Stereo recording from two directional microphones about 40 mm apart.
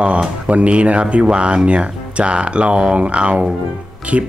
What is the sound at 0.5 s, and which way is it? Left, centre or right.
Speech, right.